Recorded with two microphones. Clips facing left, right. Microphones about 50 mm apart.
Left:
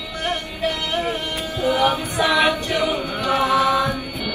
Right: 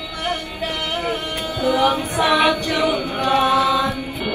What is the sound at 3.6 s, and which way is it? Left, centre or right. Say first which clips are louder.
Chant: even; left.